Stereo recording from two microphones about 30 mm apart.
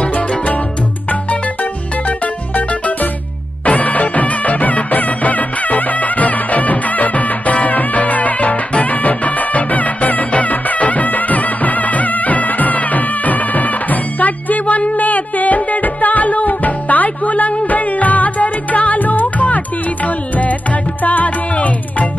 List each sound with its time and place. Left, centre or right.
1.3 s music: left
3.6 s music: left